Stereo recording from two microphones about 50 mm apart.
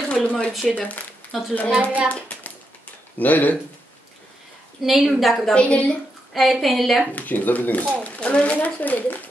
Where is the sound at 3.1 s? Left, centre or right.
Left.